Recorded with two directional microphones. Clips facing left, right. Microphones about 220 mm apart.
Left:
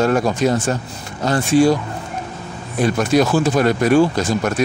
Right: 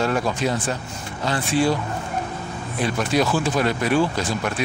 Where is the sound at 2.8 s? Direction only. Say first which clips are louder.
Left 6 dB; 45° left (ahead or behind).